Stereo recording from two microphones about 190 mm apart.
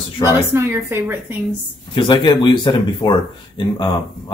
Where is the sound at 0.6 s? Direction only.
15° right (ahead or behind).